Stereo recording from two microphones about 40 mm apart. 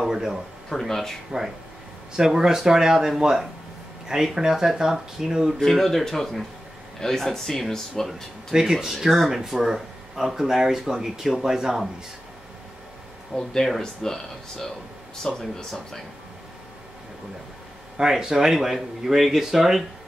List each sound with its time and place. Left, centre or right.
0.0 s speech: centre
0.7 s speech: centre
1.3 s speech: centre
5.6 s speech: centre
8.1 s speech: centre
13.7 s speech: centre
17.9 s speech: centre